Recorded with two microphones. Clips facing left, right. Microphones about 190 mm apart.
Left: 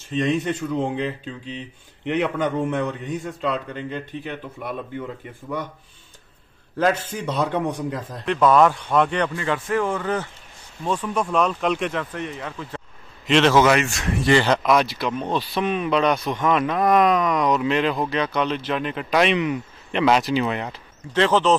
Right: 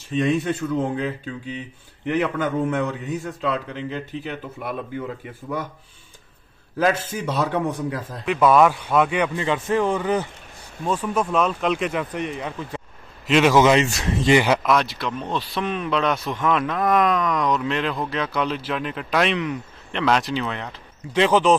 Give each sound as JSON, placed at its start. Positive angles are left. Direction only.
{"t": 0.1, "sound": "a man's voice", "side_deg": -10}
{"t": 6.8, "sound": "a man's voice", "side_deg": -5}
{"t": 9.3, "sound": "a man's voice", "side_deg": -20}
{"t": 10.9, "sound": "a man's voice", "side_deg": -5}
{"t": 11.9, "sound": "a man's voice", "side_deg": -15}
{"t": 21.1, "sound": "a man's voice", "side_deg": -15}